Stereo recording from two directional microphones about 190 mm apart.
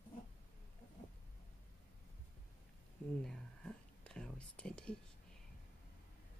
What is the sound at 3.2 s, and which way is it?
Whispering, 5° left (ahead or behind).